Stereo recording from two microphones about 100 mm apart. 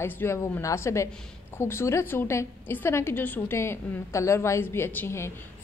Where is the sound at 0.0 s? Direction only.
25° left (ahead or behind).